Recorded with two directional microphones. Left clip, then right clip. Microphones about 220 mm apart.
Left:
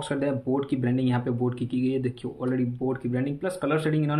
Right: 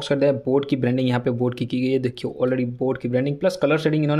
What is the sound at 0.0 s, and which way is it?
Speech, 50° right (ahead or behind).